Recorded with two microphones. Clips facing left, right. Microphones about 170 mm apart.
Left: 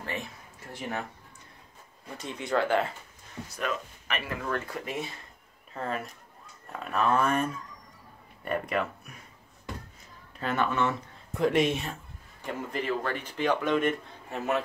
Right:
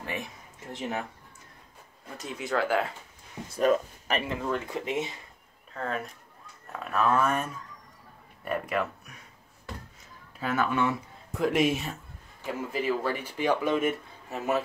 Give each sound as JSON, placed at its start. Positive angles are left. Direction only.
{"t": 0.0, "sound": "speech", "side_deg": -15}
{"t": 2.1, "sound": "speech", "side_deg": -5}
{"t": 3.4, "sound": "speech", "side_deg": -30}
{"t": 5.7, "sound": "speech", "side_deg": 0}
{"t": 10.3, "sound": "speech", "side_deg": -5}